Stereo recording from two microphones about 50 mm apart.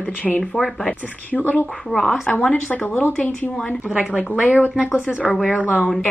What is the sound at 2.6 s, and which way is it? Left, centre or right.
Speech, left.